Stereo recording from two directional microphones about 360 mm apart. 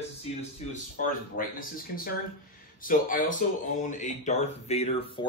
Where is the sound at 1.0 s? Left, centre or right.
Left.